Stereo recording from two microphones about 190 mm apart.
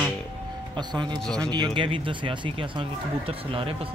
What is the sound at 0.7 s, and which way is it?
Speech, 25° right (ahead or behind).